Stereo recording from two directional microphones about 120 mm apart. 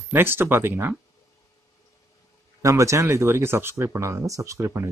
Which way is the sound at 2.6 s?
25° right (ahead or behind).